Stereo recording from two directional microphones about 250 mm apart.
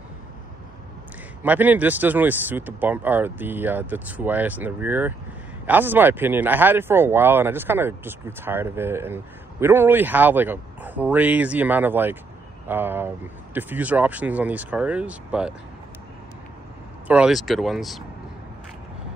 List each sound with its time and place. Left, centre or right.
1.4 s speech: centre
17.1 s speech: centre